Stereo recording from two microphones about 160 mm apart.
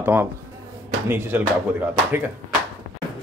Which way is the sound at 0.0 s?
15° right (ahead or behind).